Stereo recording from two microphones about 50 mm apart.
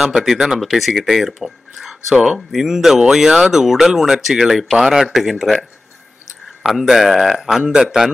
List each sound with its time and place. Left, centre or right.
0.0 s speech: centre
7.6 s speech: right